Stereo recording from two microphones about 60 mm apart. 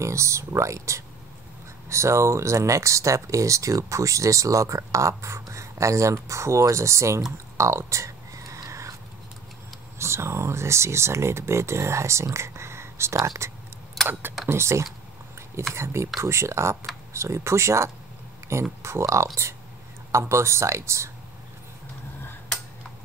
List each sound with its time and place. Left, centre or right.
0.0 s speech: right
7.5 s a sound: right
9.9 s speech: right
14.0 s computer keyboard: centre
14.5 s speech: right